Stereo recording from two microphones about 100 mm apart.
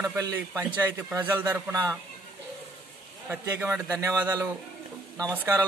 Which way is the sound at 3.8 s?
30° right (ahead or behind).